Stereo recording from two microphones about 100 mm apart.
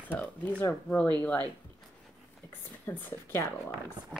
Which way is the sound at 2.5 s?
20° left (ahead or behind).